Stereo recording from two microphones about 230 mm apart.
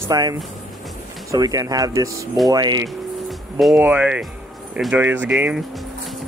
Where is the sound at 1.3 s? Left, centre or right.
Centre.